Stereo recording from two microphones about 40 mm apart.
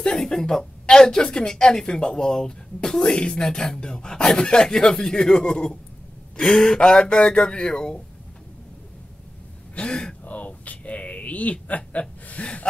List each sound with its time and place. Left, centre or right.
0.1 s speech: centre
9.8 s speech: left
10.2 s a sound: left